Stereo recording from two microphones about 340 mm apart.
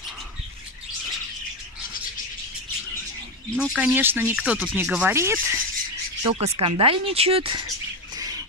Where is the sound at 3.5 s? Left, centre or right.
Centre.